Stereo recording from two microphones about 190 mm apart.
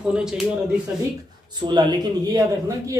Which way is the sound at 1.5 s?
25° right (ahead or behind).